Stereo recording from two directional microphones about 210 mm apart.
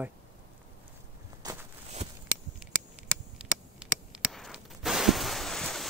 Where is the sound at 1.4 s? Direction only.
20° right (ahead or behind).